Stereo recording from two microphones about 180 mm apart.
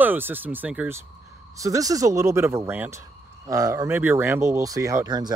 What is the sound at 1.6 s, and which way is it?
Speech, 20° right (ahead or behind).